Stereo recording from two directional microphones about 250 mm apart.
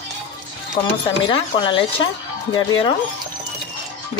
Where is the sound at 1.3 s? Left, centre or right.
Left.